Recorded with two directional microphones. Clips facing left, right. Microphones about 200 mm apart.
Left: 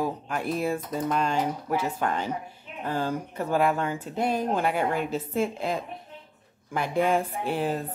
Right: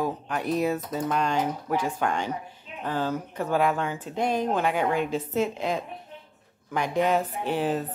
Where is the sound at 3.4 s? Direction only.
45° left (ahead or behind).